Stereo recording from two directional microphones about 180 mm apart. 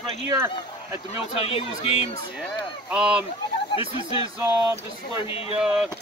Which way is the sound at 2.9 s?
5° right (ahead or behind).